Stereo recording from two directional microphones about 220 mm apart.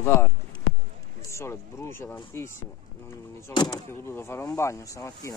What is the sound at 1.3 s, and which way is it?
Speech, 10° left (ahead or behind).